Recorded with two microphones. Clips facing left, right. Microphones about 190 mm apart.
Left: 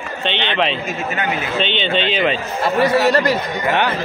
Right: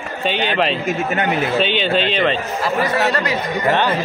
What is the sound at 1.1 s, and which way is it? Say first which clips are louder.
Speech: right 2 dB; 45° right (ahead or behind).